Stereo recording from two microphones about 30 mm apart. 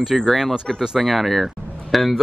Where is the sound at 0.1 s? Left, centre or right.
Centre.